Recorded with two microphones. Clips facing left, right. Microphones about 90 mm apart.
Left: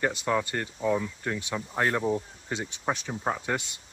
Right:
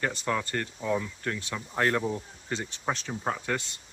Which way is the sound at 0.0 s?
15° left (ahead or behind).